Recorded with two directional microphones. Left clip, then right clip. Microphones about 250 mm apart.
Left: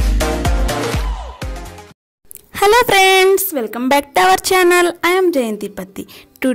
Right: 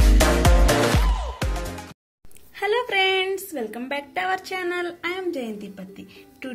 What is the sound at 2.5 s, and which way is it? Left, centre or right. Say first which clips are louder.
A woman's voice: left 12 dB; left.